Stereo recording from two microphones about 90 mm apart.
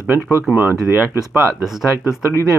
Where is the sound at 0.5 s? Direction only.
20° right (ahead or behind).